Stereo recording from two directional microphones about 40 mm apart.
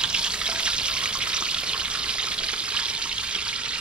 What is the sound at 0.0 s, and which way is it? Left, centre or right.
Water, right.